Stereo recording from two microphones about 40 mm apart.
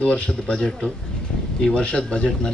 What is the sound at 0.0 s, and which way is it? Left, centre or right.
Speech, left.